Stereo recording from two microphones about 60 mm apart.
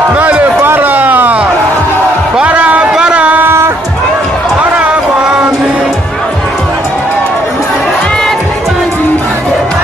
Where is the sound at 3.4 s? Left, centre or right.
Right.